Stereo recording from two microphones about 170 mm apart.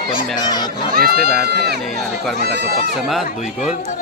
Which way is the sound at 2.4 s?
65° right (ahead or behind).